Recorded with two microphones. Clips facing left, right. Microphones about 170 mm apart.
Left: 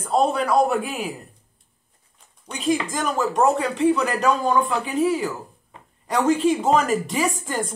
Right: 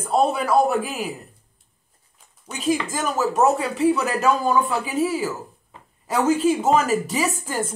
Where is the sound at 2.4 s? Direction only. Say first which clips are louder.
Even; centre (ahead or behind).